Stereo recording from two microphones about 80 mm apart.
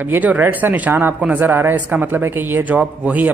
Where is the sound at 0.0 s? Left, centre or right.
Right.